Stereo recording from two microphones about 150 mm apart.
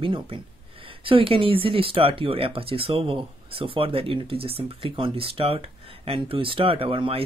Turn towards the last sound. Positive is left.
turn(degrees=-35)  # may be behind; listen again after turning